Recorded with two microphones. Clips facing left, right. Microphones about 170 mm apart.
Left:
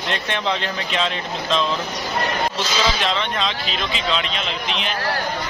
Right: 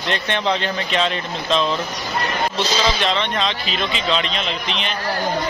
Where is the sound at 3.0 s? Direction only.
Centre (ahead or behind).